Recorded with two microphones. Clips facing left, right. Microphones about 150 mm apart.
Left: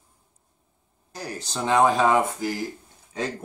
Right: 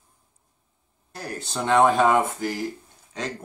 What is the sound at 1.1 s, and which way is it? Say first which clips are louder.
Speech: right 1 dB; centre (ahead or behind).